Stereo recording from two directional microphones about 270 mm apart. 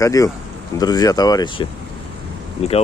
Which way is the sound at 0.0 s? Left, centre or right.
Centre.